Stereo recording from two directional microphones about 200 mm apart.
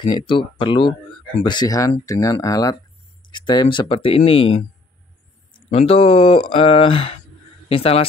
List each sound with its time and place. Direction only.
0.0 s speech: 25° left (ahead or behind)